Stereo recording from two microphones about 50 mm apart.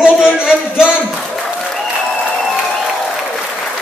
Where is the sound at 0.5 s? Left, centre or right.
Centre.